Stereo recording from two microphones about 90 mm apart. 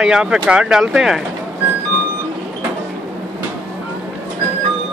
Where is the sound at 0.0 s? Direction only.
10° right (ahead or behind).